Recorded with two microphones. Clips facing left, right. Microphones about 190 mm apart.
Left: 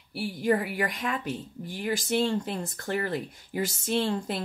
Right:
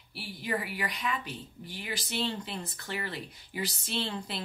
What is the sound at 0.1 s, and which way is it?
Speech, 50° left (ahead or behind).